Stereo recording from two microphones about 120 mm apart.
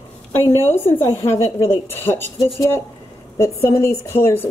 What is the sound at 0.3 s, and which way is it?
A woman's voice, 20° left (ahead or behind).